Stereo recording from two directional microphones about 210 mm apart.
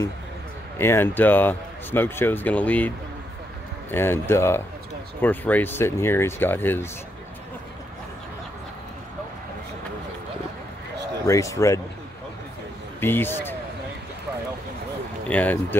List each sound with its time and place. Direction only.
0.7 s speech: 10° left (ahead or behind)
3.9 s speech: 10° left (ahead or behind)
11.2 s speech: 15° left (ahead or behind)
13.0 s speech: 10° left (ahead or behind)
15.2 s speech: 5° left (ahead or behind)